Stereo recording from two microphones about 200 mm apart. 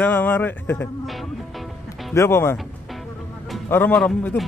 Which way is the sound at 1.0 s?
Centre (ahead or behind).